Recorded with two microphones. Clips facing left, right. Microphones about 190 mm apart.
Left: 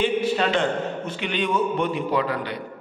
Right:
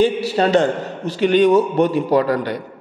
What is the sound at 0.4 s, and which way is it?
A man's voice, 40° right (ahead or behind).